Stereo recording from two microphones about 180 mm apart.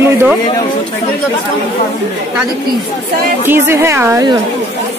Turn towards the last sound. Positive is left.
turn(degrees=-20)  # may be behind; listen again after turning